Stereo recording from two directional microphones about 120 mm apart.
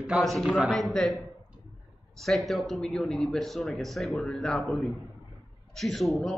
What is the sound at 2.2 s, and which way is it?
A man's voice, centre (ahead or behind).